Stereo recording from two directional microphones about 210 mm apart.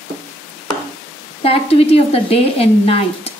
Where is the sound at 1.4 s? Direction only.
30° left (ahead or behind).